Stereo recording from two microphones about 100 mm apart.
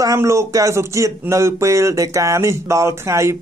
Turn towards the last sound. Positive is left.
turn(degrees=-30)  # may be behind; listen again after turning